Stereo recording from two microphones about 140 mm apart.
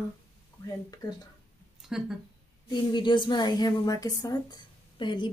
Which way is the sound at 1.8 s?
5° right (ahead or behind).